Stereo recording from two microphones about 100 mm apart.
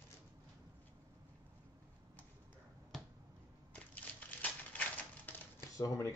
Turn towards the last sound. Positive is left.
turn(degrees=35)  # may be behind; listen again after turning